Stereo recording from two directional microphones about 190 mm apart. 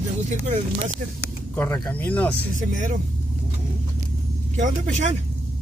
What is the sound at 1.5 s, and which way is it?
Speech, 10° left (ahead or behind).